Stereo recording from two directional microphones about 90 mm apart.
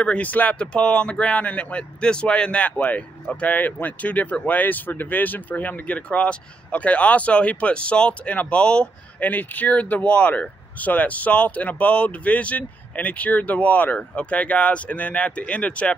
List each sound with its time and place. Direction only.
0.0 s speech: 15° left (ahead or behind)